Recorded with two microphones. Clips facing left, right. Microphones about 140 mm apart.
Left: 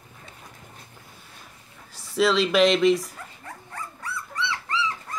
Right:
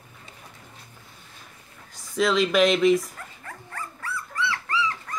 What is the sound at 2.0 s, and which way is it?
Speech, centre (ahead or behind).